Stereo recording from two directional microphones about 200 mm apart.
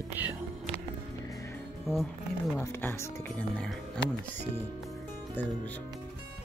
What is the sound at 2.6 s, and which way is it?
Speech, 10° left (ahead or behind).